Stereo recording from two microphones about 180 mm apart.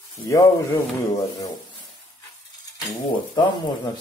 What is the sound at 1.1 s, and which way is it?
Speech, 20° left (ahead or behind).